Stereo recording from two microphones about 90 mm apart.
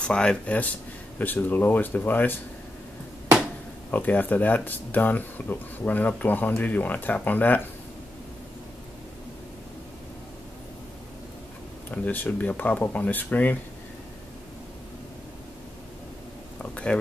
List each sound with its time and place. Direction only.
0.0 s speech: 10° left (ahead or behind)
3.9 s speech: 20° left (ahead or behind)
11.9 s speech: 20° left (ahead or behind)
16.7 s speech: 10° left (ahead or behind)